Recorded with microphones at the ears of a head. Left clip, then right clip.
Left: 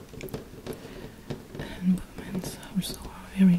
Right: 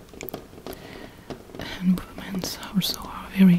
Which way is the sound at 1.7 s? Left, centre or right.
Right.